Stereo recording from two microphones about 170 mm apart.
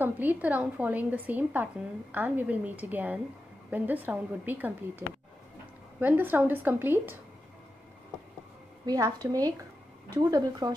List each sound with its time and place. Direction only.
0.0 s a woman's voice: 10° right (ahead or behind)
8.8 s a woman's voice: 20° right (ahead or behind)